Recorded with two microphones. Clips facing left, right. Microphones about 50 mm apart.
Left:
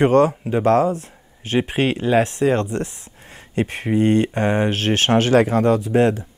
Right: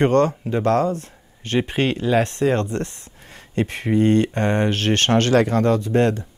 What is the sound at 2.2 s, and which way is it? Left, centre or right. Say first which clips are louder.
Speech: left 1 dB; centre.